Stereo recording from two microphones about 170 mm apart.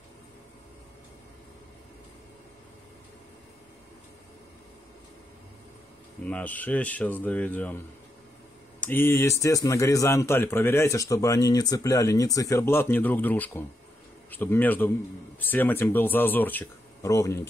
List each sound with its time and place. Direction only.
6.2 s a man's voice: 10° left (ahead or behind)
8.8 s a man's voice: 10° left (ahead or behind)